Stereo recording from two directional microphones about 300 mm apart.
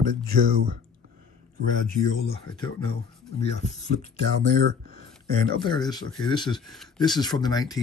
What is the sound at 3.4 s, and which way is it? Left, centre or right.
Speech, left.